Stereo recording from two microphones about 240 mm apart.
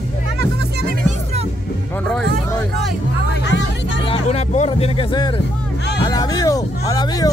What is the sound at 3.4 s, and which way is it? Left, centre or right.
Vehicle, left.